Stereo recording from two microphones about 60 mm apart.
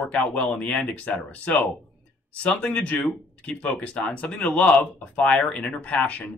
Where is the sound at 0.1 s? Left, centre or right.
Centre.